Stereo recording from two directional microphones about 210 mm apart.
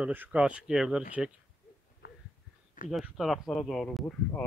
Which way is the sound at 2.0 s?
50° left (ahead or behind).